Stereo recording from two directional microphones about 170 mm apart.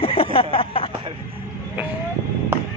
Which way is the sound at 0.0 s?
35° left (ahead or behind).